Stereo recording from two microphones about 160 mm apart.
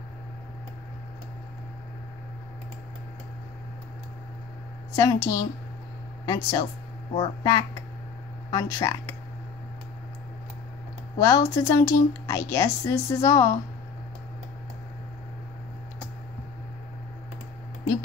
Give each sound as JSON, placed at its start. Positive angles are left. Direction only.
{"t": 4.9, "sound": "speech", "side_deg": 20}
{"t": 11.1, "sound": "speech", "side_deg": 20}